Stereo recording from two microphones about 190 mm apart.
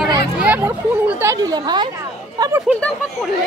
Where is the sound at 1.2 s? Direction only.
20° right (ahead or behind).